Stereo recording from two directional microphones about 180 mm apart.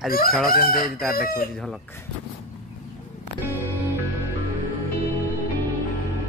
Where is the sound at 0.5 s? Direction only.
55° left (ahead or behind).